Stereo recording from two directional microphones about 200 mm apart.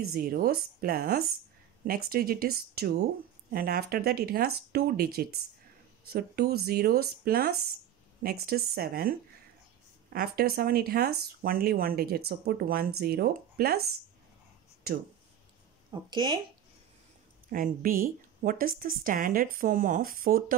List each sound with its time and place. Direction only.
0.1 s speech: 50° right (ahead or behind)
10.1 s speech: 50° right (ahead or behind)
15.9 s speech: 20° right (ahead or behind)
17.5 s speech: 45° right (ahead or behind)